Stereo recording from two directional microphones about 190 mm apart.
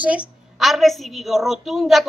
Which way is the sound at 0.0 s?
5° right (ahead or behind).